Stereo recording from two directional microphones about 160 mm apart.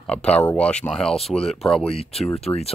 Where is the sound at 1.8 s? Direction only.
35° left (ahead or behind).